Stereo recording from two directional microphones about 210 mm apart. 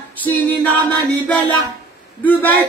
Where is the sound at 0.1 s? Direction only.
10° left (ahead or behind).